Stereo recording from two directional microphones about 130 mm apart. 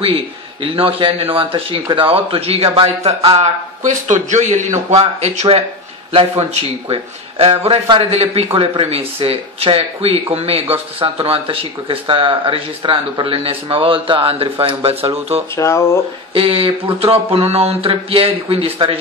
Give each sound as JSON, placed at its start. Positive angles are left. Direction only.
{"t": 0.0, "sound": "speech", "side_deg": -45}
{"t": 3.3, "sound": "a man's voice", "side_deg": -70}
{"t": 15.5, "sound": "speech", "side_deg": 20}
{"t": 16.3, "sound": "speech", "side_deg": -45}